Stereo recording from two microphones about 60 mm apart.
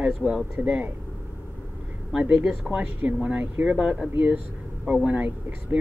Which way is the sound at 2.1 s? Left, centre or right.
Right.